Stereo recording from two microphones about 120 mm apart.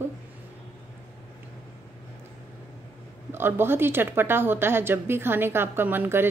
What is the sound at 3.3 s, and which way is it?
A woman's voice, 20° right (ahead or behind).